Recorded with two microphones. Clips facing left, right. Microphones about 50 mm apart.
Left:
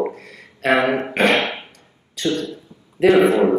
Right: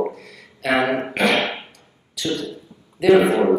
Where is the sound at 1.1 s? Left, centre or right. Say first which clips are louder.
Left 2 dB; left.